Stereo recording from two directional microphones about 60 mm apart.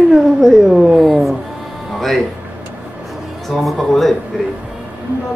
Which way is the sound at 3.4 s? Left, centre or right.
Centre.